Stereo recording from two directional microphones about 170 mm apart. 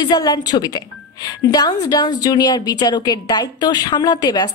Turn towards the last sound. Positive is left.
turn(degrees=25)  # may be behind; listen again after turning